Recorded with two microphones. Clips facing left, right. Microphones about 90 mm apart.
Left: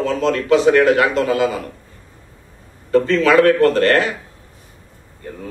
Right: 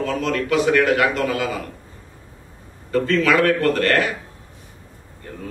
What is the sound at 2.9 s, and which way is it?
A man's voice, 30° left (ahead or behind).